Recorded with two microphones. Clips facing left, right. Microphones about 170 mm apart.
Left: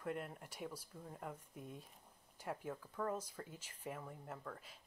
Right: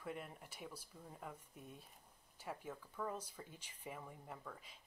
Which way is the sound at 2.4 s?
10° left (ahead or behind).